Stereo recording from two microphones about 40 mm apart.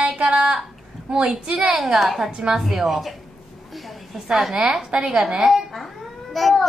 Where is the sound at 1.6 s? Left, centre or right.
Centre.